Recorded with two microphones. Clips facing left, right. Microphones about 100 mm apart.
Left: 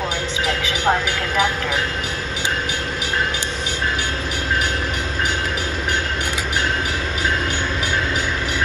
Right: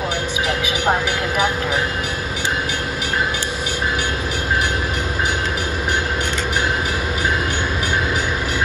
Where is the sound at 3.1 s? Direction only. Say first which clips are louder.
Right 1 dB; 15° right (ahead or behind).